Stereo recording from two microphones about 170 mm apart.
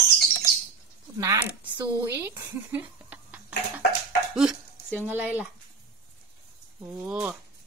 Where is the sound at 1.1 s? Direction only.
15° right (ahead or behind).